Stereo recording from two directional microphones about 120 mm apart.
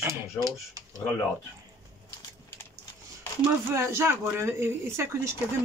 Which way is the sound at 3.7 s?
20° right (ahead or behind).